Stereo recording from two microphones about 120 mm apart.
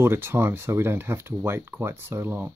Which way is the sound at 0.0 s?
20° right (ahead or behind).